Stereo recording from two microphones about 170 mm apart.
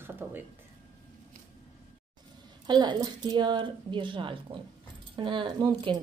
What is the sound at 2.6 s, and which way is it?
Speech, 25° right (ahead or behind).